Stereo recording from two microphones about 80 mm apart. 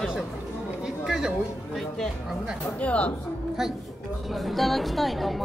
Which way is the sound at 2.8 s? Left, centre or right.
Centre.